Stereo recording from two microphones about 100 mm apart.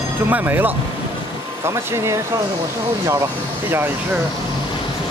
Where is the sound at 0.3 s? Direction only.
20° right (ahead or behind).